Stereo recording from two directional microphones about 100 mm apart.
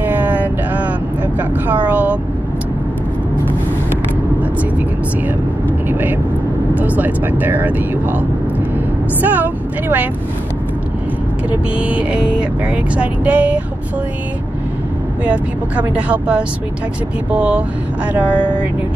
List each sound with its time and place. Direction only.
0.0 s a sound: 15° right (ahead or behind)
1.9 s vehicle: 15° right (ahead or behind)
5.9 s vehicle: 20° right (ahead or behind)
9.2 s vehicle: 20° right (ahead or behind)
11.8 s speech: 10° right (ahead or behind)
15.2 s speech: 15° right (ahead or behind)